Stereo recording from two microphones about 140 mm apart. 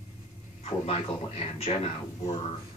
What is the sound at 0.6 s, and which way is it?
A man's voice, 45° left (ahead or behind).